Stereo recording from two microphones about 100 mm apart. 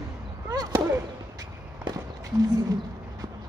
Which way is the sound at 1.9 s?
50° right (ahead or behind).